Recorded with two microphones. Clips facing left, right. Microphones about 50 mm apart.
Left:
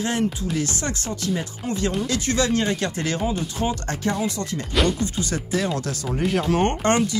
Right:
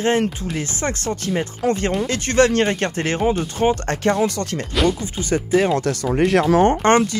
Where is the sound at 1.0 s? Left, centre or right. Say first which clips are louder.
Right 4 dB; right.